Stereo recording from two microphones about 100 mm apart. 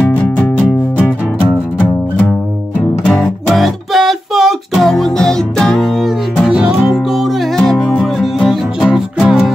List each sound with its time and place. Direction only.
0.0 s music: 15° left (ahead or behind)
3.1 s music: centre (ahead or behind)